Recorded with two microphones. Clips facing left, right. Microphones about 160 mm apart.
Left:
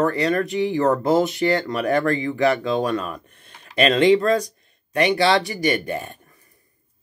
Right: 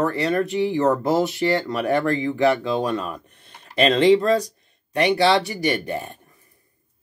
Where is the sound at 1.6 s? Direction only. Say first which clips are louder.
Even; 10° right (ahead or behind).